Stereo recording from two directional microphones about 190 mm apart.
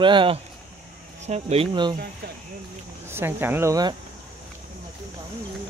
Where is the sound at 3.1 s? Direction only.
10° right (ahead or behind).